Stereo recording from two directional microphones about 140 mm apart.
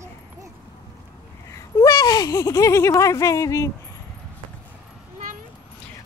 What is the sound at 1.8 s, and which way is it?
Speech, 25° left (ahead or behind).